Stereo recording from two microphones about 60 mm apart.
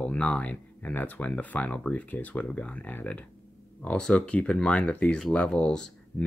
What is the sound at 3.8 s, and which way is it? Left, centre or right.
Speech, centre.